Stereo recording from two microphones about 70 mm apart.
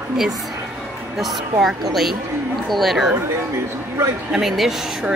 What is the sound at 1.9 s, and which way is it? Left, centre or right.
Speech, centre.